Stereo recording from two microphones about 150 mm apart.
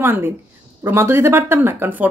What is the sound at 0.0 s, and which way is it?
Speech, 15° right (ahead or behind).